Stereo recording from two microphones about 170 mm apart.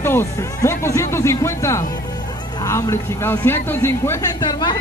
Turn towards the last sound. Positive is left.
turn(degrees=25)  # may be behind; listen again after turning